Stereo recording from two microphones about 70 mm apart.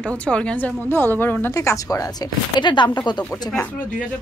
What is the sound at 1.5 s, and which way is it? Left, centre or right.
Speech, left.